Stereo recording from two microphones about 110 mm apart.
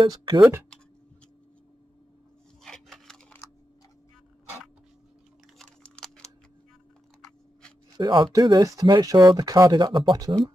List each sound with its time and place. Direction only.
0.1 s speech: 45° right (ahead or behind)
2.6 s rub: 5° left (ahead or behind)
5.6 s computer keyboard: 5° left (ahead or behind)
8.0 s speech: 40° right (ahead or behind)